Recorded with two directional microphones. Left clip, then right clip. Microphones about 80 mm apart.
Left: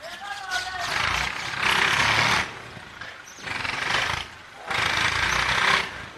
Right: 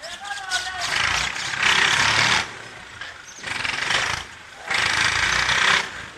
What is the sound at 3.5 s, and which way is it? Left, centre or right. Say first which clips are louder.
Vehicle: right 3 dB; right.